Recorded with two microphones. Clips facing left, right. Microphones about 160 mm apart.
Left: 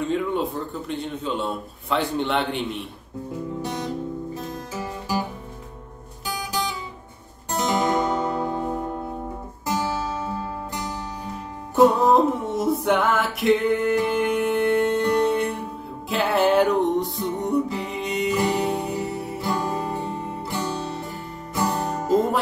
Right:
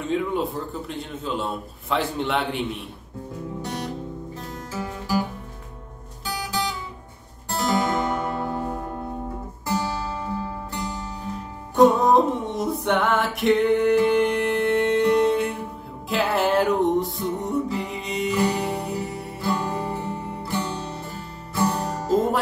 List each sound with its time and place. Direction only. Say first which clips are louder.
0.0 s a man's voice: left 1 dB; centre (ahead or behind)
3.6 s music: left 1 dB; 15° left (ahead or behind)
7.5 s music: left 1 dB; 20° left (ahead or behind)
11.7 s music: even; 5° left (ahead or behind)
19.3 s music: right 1 dB; 15° left (ahead or behind)